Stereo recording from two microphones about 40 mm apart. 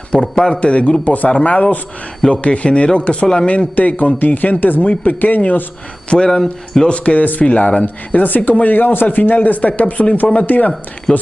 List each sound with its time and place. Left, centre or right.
0.2 s speech: centre
0.6 s a man's voice: left
3.7 s speech: left
6.0 s speech: centre
6.9 s speech: left
7.8 s speech: left
9.6 s speech: left
10.4 s speech: left
11.1 s speech: left